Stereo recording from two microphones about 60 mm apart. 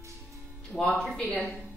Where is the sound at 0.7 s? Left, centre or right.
Centre.